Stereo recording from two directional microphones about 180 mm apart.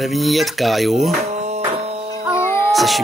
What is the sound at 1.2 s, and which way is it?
Mantra, 40° right (ahead or behind).